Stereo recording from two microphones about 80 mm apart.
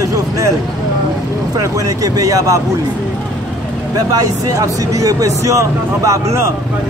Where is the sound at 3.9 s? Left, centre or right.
Right.